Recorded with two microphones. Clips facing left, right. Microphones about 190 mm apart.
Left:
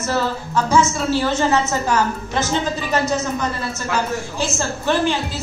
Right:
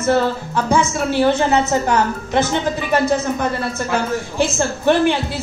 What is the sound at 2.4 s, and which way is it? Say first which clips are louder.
Speech: right 1 dB; 55° right (ahead or behind).